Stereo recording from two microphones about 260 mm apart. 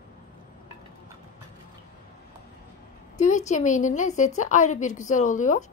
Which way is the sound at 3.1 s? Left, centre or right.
Left.